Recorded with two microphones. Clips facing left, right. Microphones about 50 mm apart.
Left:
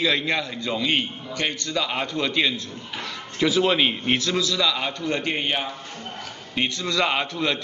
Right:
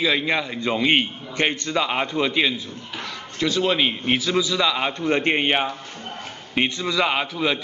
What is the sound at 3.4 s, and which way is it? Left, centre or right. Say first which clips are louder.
A man's voice: left 1 dB; centre.